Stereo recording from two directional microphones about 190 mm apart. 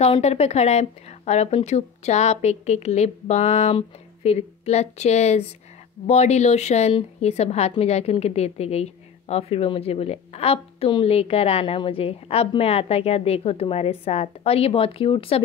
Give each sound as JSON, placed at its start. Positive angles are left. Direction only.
{"t": 0.0, "sound": "a woman's voice", "side_deg": 35}